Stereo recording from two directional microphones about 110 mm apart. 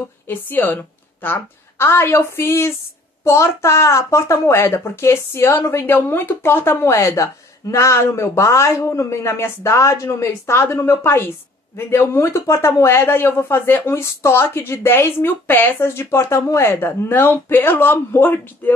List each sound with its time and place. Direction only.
0.3 s a woman's voice: 15° left (ahead or behind)